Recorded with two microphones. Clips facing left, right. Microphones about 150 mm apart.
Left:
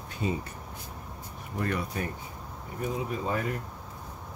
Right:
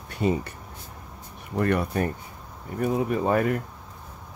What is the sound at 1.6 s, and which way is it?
Speech, 60° right (ahead or behind).